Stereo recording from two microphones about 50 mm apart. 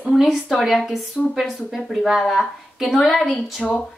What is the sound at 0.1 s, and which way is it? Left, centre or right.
A woman's voice, centre.